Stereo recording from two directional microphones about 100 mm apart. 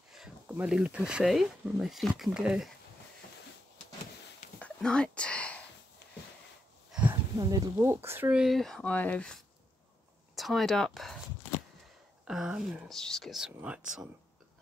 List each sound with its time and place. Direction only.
0.1 s a sound: 5° right (ahead or behind)
0.6 s speech: 10° right (ahead or behind)
4.6 s a sound: 10° left (ahead or behind)
6.9 s a sound: 15° right (ahead or behind)
7.3 s speech: 40° right (ahead or behind)
8.3 s speech: 5° right (ahead or behind)
8.9 s speech: 15° left (ahead or behind)
10.3 s speech: centre (ahead or behind)
12.3 s speech: 5° right (ahead or behind)
12.8 s speech: 5° left (ahead or behind)